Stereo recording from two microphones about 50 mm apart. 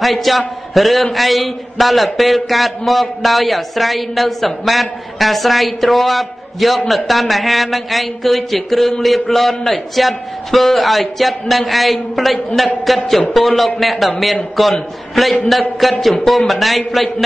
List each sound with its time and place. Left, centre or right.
0.0 s a man's voice: centre